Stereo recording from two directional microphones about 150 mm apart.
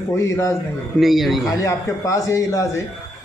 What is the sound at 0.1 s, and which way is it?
Speech, 15° left (ahead or behind).